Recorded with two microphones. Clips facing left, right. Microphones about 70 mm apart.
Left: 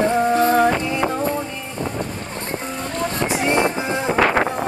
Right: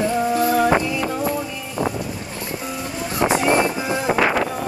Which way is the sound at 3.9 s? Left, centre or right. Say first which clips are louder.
Left 1 dB; centre.